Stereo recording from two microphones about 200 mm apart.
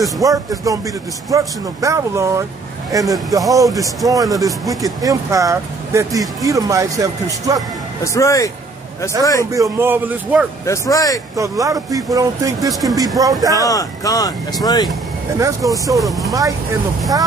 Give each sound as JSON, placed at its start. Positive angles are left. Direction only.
{"t": 0.2, "sound": "speech", "side_deg": -15}
{"t": 8.0, "sound": "speech", "side_deg": 15}
{"t": 9.5, "sound": "speech", "side_deg": -15}
{"t": 10.6, "sound": "speech", "side_deg": 15}
{"t": 11.3, "sound": "speech", "side_deg": -15}
{"t": 13.6, "sound": "speech", "side_deg": 15}
{"t": 15.3, "sound": "speech", "side_deg": -15}
{"t": 16.0, "sound": "speech", "side_deg": 0}